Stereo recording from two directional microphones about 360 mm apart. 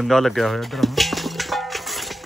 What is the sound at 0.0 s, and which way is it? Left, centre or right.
Speech, centre.